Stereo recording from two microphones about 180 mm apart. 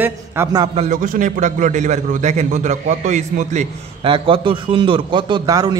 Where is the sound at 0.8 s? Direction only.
45° right (ahead or behind).